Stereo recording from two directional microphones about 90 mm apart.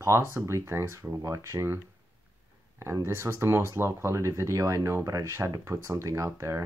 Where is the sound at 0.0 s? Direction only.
35° right (ahead or behind).